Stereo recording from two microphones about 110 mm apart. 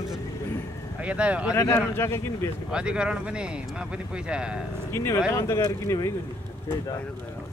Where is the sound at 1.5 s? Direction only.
25° left (ahead or behind).